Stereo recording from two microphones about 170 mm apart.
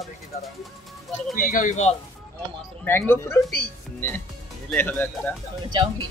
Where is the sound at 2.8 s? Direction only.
15° left (ahead or behind).